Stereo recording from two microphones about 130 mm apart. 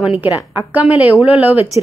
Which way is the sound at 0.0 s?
10° right (ahead or behind).